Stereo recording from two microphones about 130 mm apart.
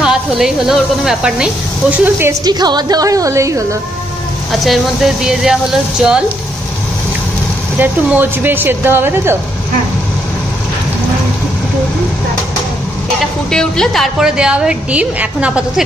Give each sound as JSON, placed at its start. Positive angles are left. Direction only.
{"t": 0.0, "sound": "speech", "side_deg": -5}
{"t": 2.4, "sound": "a woman's voice", "side_deg": -30}
{"t": 4.5, "sound": "speech", "side_deg": 0}
{"t": 7.8, "sound": "a woman's voice", "side_deg": -15}
{"t": 13.5, "sound": "a woman's voice", "side_deg": 5}